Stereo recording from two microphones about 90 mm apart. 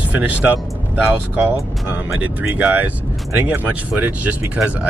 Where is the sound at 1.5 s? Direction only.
20° right (ahead or behind).